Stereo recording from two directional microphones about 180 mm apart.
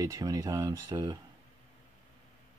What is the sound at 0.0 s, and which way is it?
Speech, 20° right (ahead or behind).